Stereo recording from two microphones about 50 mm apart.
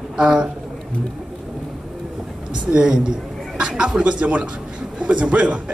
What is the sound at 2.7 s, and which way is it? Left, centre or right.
A woman's voice, centre.